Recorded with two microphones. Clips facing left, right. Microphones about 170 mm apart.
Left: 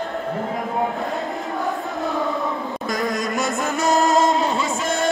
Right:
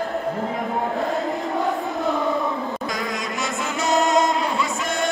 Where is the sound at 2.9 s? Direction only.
45° left (ahead or behind).